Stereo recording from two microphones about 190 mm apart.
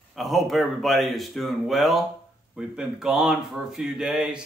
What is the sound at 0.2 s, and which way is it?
Speech, centre (ahead or behind).